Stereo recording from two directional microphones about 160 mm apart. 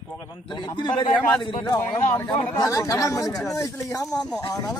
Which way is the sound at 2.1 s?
15° left (ahead or behind).